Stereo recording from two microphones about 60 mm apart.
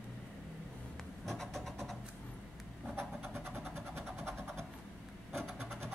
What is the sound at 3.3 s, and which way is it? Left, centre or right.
Vehicle, right.